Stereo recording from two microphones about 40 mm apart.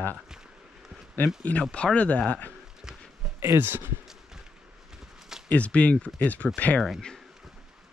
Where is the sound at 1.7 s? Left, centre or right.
Left.